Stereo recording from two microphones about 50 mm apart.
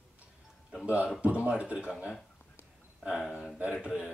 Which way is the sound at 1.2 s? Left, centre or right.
Right.